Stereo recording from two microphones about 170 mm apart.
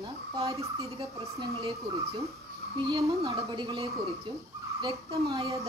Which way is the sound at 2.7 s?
30° right (ahead or behind).